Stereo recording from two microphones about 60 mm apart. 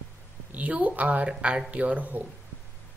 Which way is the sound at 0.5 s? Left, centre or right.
Right.